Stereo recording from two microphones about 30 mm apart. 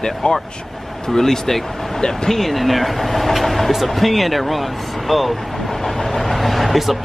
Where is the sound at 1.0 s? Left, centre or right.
Centre.